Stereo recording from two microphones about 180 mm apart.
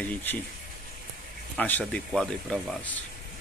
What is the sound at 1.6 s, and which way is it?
Speech, 10° left (ahead or behind).